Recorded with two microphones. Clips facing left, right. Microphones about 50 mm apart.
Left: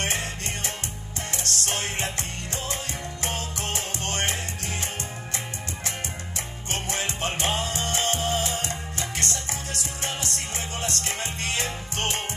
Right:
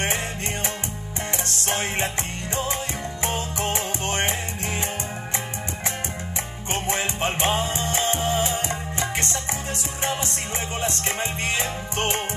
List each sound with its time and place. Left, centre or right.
1.4 s music: right
3.3 s music: right
6.7 s music: right
10.8 s music: right